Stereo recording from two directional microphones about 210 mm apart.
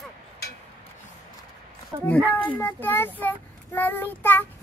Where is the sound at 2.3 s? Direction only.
5° left (ahead or behind).